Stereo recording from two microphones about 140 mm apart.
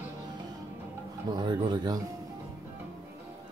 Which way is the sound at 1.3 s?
30° right (ahead or behind).